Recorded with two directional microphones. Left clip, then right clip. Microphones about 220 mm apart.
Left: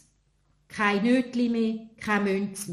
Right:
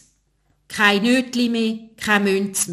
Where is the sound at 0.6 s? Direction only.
35° right (ahead or behind).